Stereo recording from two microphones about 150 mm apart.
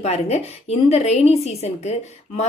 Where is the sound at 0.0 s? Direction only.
45° left (ahead or behind).